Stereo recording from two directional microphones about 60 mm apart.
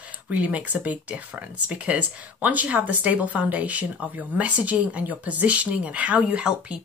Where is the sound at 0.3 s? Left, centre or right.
Right.